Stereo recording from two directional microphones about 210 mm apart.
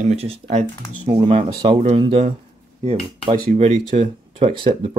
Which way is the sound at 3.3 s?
30° right (ahead or behind).